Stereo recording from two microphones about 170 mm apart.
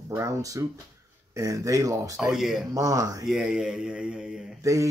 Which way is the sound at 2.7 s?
20° right (ahead or behind).